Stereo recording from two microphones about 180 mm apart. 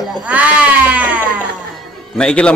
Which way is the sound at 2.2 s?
5° left (ahead or behind).